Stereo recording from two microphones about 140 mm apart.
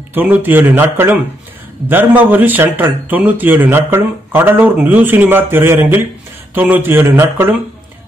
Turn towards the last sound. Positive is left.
turn(degrees=-20)  # may be behind; listen again after turning